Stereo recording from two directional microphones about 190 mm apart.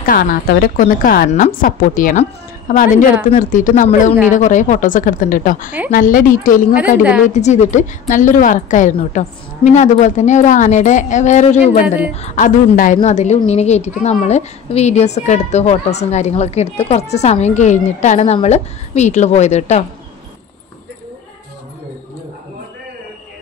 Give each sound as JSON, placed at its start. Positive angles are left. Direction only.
{"t": 0.0, "sound": "a woman's voice", "side_deg": 50}